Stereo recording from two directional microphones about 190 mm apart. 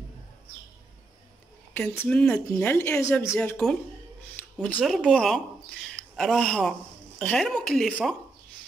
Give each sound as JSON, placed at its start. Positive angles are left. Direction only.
{"t": 1.7, "sound": "speech", "side_deg": 10}